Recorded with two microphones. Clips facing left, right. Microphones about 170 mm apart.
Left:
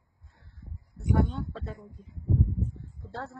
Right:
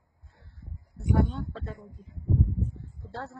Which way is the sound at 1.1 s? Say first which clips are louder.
Right 1 dB; centre (ahead or behind).